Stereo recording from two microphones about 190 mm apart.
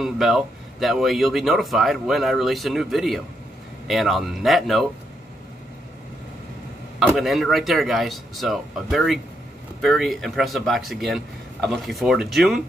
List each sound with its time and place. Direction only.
0.0 s speech: centre (ahead or behind)
7.0 s speech: centre (ahead or behind)